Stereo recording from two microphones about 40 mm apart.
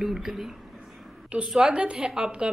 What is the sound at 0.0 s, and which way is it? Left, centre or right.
Speech, centre.